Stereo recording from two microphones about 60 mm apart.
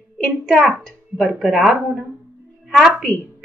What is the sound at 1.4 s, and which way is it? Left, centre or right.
Speech, centre.